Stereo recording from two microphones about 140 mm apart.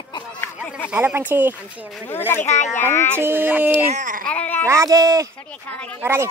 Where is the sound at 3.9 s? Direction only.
70° right (ahead or behind).